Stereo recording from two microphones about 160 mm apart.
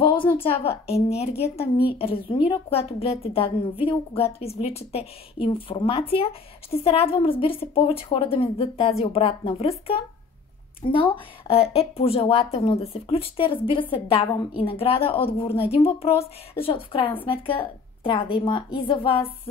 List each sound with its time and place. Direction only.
0.5 s speech: 40° left (ahead or behind)